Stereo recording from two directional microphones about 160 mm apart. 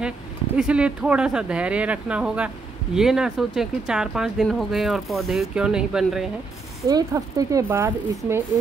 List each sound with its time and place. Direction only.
0.6 s speech: 5° right (ahead or behind)
6.9 s speech: 20° right (ahead or behind)